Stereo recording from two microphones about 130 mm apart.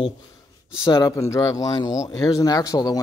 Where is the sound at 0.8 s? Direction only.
25° left (ahead or behind).